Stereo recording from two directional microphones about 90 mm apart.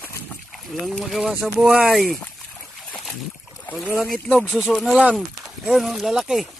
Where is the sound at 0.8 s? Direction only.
Centre (ahead or behind).